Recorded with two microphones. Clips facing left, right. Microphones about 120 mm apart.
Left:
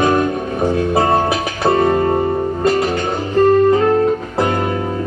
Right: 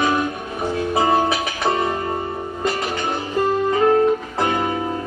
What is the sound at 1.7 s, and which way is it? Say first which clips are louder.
Music: left 7 dB; 35° left (ahead or behind).